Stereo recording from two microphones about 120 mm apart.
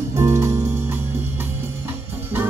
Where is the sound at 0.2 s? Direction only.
20° right (ahead or behind).